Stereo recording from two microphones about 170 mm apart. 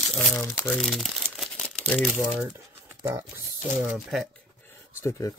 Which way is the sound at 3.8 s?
Centre (ahead or behind).